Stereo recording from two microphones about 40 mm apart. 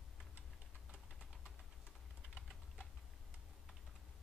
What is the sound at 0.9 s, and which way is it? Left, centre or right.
Typing, centre.